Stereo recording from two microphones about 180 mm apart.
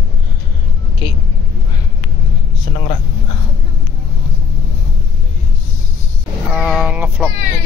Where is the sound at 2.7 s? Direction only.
35° left (ahead or behind).